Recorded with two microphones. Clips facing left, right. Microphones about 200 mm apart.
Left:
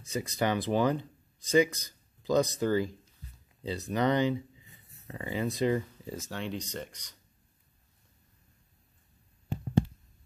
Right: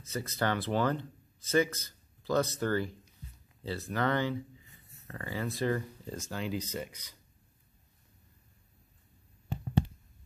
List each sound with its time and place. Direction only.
0.1 s speech: 15° left (ahead or behind)
6.1 s speech: centre (ahead or behind)